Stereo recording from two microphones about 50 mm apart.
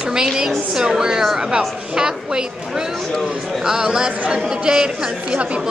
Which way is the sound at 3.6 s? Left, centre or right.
Centre.